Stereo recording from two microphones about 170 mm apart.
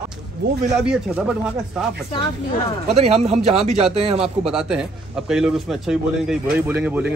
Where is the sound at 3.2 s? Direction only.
40° right (ahead or behind).